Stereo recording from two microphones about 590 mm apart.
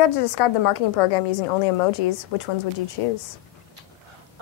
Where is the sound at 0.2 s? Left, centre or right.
Left.